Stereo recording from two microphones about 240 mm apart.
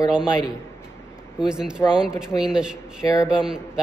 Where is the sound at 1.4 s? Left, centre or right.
Centre.